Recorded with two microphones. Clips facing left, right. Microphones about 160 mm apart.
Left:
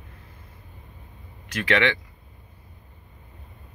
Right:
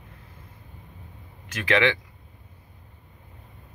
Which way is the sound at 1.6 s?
15° right (ahead or behind).